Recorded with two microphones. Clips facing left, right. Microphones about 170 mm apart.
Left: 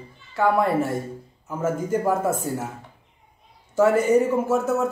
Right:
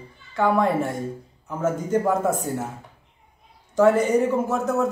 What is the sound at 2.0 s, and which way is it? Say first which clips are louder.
Speech: even; 5° left (ahead or behind).